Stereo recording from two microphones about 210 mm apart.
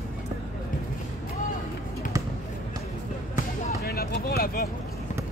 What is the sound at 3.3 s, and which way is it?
Basketball bounce, 50° left (ahead or behind).